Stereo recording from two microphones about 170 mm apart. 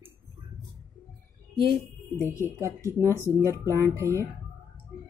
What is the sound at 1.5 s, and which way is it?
Speech, 30° right (ahead or behind).